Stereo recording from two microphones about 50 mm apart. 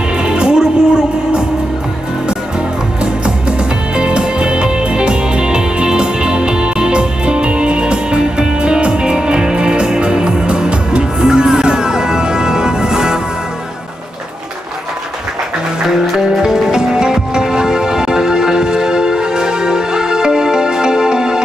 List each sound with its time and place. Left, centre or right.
0.2 s music: centre
3.5 s music: centre
16.3 s music: centre